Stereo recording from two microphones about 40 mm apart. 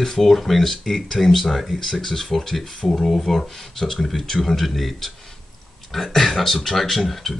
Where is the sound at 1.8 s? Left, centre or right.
Centre.